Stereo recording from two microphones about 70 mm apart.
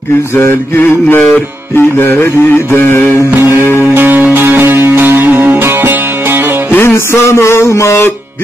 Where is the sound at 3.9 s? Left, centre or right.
Right.